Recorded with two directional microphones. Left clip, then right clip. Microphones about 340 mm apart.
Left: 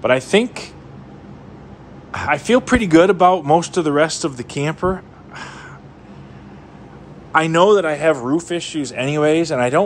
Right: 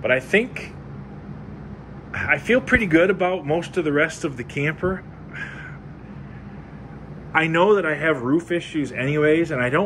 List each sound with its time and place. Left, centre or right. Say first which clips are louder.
0.3 s speech: left 4 dB; centre
2.2 s speech: left 3 dB; centre
7.3 s speech: left 4 dB; centre